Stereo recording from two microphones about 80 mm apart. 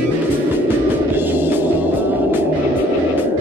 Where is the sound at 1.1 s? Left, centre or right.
Right.